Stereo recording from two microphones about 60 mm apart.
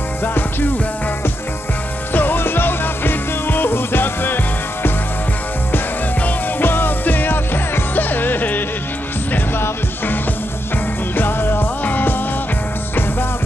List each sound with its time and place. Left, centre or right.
0.2 s music: left
2.1 s music: left
6.2 s music: left
11.1 s music: left